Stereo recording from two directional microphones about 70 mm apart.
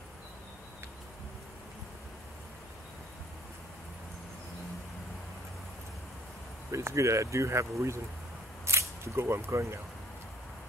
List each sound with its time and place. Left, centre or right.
6.7 s speech: right